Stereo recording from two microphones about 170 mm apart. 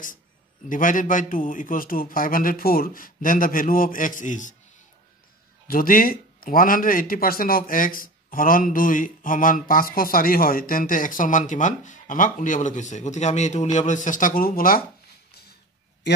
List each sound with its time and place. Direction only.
0.7 s speech: 50° left (ahead or behind)
5.7 s speech: 55° left (ahead or behind)